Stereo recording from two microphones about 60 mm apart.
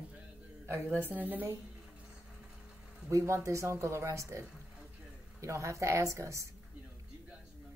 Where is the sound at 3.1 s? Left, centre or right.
Right.